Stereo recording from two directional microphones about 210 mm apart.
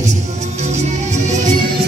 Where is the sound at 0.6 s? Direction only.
35° right (ahead or behind).